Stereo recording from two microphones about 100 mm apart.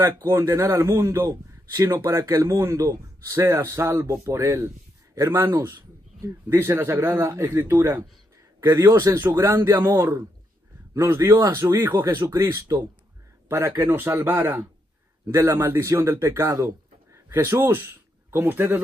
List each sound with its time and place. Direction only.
0.0 s a man's voice: 25° right (ahead or behind)
3.3 s speech: 25° right (ahead or behind)
8.6 s speech: 40° right (ahead or behind)
9.8 s speech: 25° right (ahead or behind)